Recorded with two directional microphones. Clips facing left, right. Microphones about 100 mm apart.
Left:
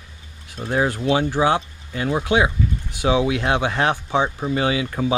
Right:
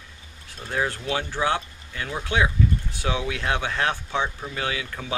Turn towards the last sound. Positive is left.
turn(degrees=20)  # may be behind; listen again after turning